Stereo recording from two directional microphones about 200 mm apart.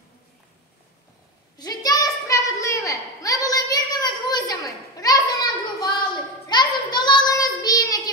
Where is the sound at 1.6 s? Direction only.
20° left (ahead or behind).